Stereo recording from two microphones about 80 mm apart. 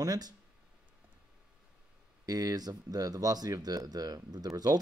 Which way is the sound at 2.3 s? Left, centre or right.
Right.